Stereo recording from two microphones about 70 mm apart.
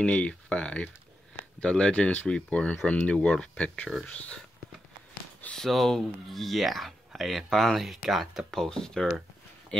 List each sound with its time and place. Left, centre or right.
0.0 s speech: centre
5.6 s speech: centre